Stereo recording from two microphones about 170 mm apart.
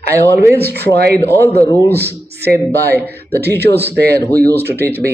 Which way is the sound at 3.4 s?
75° right (ahead or behind).